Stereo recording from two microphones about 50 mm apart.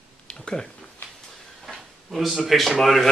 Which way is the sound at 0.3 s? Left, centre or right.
Centre.